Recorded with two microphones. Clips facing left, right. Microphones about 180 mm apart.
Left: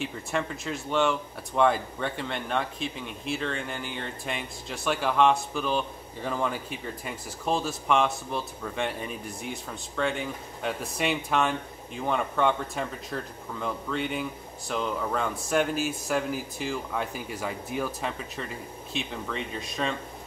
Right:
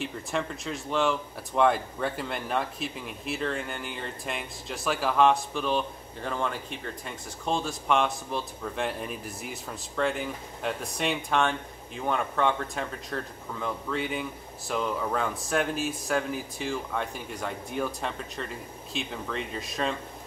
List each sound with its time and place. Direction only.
0.0 s speech: centre (ahead or behind)